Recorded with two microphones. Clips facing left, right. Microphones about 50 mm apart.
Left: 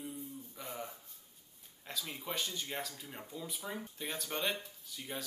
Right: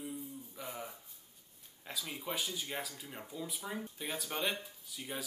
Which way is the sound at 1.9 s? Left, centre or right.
Centre.